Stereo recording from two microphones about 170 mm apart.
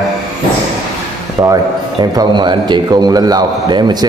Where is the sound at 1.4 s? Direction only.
20° right (ahead or behind).